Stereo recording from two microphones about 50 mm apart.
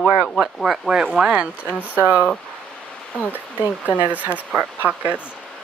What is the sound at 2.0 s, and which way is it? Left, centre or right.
Speech, right.